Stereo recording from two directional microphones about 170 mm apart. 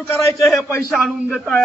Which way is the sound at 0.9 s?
Centre (ahead or behind).